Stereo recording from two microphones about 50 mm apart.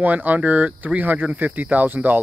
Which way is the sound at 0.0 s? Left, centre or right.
Right.